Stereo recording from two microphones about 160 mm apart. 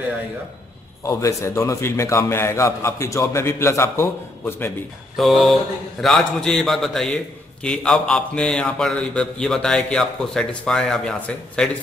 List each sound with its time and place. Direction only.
1.0 s a man's voice: 20° left (ahead or behind)
5.1 s a man's voice: centre (ahead or behind)